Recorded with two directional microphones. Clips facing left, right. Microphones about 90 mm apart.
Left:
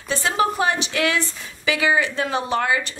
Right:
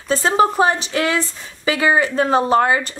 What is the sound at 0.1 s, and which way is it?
A woman's voice, 35° right (ahead or behind).